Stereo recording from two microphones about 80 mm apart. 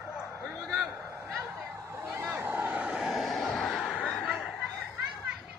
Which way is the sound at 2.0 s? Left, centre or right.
Right.